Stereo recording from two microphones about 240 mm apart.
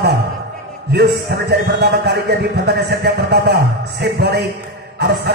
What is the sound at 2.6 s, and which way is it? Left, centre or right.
Music, right.